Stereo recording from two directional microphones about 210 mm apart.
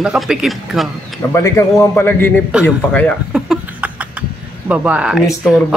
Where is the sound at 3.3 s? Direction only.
5° right (ahead or behind).